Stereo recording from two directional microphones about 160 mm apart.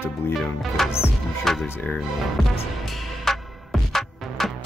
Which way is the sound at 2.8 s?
Centre (ahead or behind).